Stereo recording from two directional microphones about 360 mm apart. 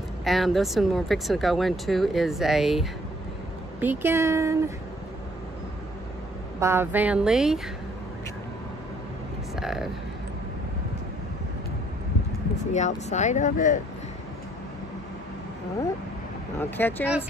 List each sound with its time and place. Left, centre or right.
0.2 s speech: centre
6.6 s speech: centre
9.6 s a sound: centre
12.7 s speech: centre
16.5 s speech: centre